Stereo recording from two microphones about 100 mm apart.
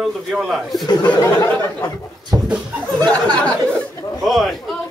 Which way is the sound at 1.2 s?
30° left (ahead or behind).